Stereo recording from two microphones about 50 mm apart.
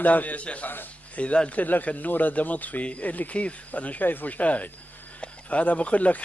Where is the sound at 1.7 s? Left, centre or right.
Left.